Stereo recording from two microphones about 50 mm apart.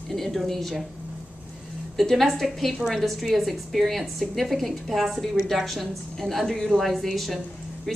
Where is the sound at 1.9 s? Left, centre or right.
Centre.